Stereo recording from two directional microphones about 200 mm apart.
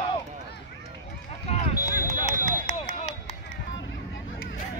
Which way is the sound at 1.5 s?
35° left (ahead or behind).